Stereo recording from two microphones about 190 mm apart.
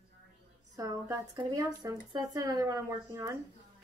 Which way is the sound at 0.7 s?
20° right (ahead or behind).